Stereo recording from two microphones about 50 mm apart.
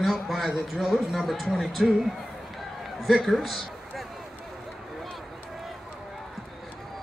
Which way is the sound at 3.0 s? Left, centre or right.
Centre.